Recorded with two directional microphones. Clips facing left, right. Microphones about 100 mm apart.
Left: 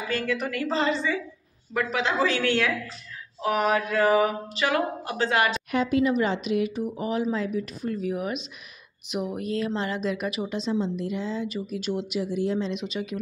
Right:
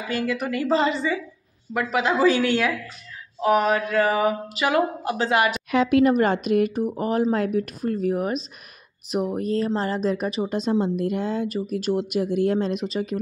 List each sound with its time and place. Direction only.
0.1 s a woman's voice: 10° right (ahead or behind)
3.4 s mantra: centre (ahead or behind)
4.6 s a woman's voice: 15° right (ahead or behind)
5.7 s speech: 80° right; by 10.5 s 35° right (ahead or behind)
10.5 s speech: 50° right (ahead or behind)